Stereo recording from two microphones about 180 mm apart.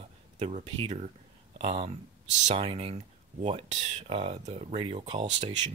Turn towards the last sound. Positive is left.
turn(degrees=-35)  # may be behind; listen again after turning